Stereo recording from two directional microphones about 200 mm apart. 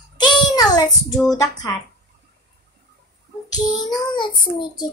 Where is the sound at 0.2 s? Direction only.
20° left (ahead or behind).